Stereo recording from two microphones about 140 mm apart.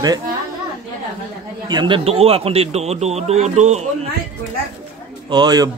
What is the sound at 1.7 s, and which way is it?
Speech, 30° right (ahead or behind).